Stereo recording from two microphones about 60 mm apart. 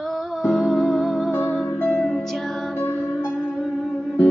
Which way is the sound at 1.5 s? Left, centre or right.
Centre.